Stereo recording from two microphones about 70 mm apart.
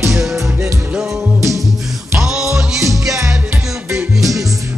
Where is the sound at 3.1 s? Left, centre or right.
Right.